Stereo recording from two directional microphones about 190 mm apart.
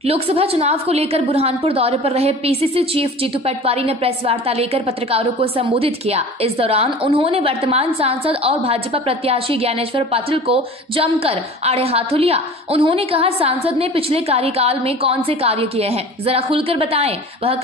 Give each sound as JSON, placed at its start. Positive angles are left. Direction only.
{"t": 0.0, "sound": "a woman's voice", "side_deg": -30}